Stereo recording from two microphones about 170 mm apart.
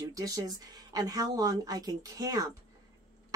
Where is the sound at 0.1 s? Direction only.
20° right (ahead or behind).